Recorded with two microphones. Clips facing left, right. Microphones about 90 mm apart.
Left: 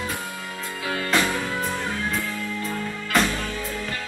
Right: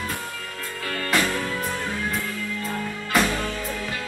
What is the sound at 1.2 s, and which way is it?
Music, 15° left (ahead or behind).